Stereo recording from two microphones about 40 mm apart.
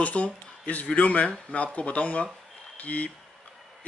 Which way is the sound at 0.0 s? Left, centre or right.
Left.